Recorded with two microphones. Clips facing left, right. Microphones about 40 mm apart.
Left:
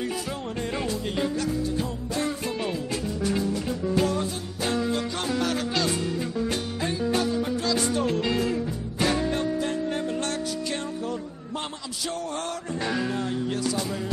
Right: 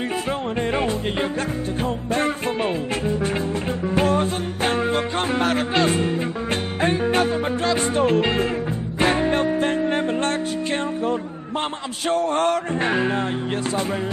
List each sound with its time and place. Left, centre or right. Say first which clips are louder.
0.6 s music: right 5 dB; right